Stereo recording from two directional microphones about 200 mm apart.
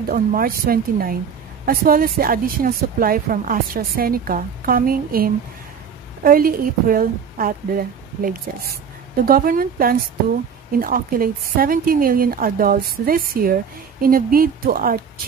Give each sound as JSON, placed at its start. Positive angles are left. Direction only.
{"t": 0.1, "sound": "a woman's voice", "side_deg": -45}